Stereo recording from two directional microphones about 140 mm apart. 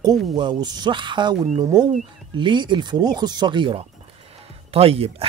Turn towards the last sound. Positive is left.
turn(degrees=-45)  # may be behind; listen again after turning